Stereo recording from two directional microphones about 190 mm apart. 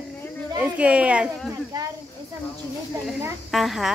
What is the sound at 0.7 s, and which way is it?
Speech, 5° right (ahead or behind).